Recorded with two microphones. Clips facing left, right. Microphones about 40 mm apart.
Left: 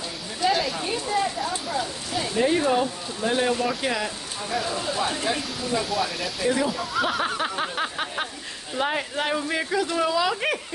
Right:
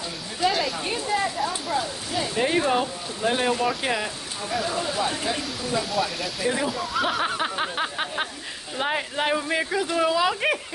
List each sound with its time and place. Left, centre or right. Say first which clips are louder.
0.5 s a sound: left 2 dB; centre
2.3 s speech: left 1 dB; centre
4.5 s speech: right 1 dB; centre